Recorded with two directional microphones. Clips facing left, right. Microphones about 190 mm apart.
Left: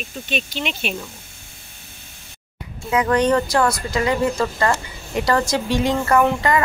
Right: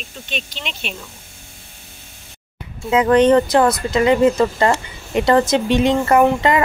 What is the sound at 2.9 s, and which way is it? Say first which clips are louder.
Speech: right 5 dB; 25° right (ahead or behind).